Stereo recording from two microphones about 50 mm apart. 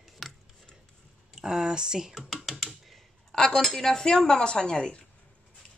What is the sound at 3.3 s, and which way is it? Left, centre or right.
Speech, centre.